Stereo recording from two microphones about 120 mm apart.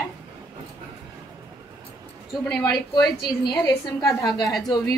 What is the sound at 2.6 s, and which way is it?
A woman's voice, 35° left (ahead or behind).